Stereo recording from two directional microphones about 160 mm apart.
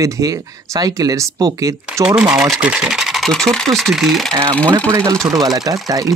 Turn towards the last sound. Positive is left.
turn(degrees=-20)  # may be behind; listen again after turning